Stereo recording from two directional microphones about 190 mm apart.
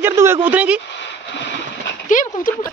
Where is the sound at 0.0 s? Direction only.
15° right (ahead or behind).